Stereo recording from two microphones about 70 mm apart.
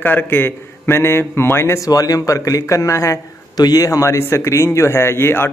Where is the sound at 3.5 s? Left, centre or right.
Left.